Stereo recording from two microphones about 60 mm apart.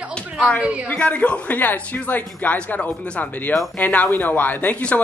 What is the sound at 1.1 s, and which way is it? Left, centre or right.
Speech, left.